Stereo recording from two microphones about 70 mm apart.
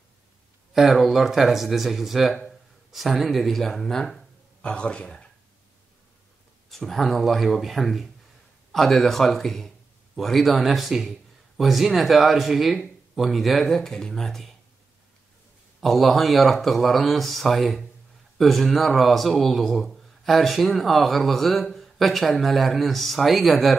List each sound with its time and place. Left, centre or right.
0.7 s a man's voice: centre
6.7 s speech: centre
15.8 s speech: centre